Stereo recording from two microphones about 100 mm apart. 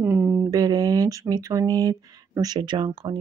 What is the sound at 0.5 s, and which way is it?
Mantra, 40° right (ahead or behind).